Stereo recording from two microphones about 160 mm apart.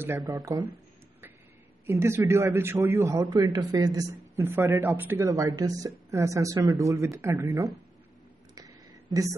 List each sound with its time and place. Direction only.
0.5 s a man's voice: 20° right (ahead or behind)
1.9 s a man's voice: 15° right (ahead or behind)
8.5 s a sound: 20° right (ahead or behind)